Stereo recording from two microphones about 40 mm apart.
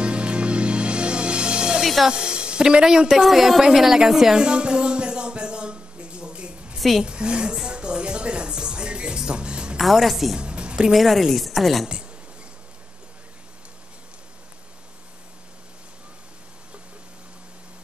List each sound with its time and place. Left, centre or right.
0.0 s music: right
1.8 s music: centre
2.0 s speech: right
4.4 s a sound: right
7.1 s a woman's voice: right
7.6 s music: right
9.8 s speech: centre
10.3 s music: right
10.9 s speech: centre